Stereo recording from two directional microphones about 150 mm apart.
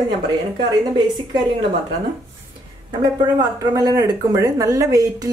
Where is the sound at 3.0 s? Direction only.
25° right (ahead or behind).